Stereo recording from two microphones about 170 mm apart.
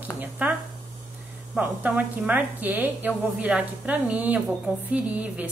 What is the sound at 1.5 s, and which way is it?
A woman's voice, 10° right (ahead or behind).